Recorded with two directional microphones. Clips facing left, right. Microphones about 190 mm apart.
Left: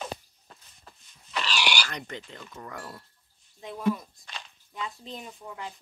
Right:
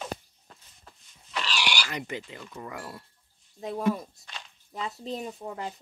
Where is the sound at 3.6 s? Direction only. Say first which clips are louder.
Right 1 dB; 35° right (ahead or behind).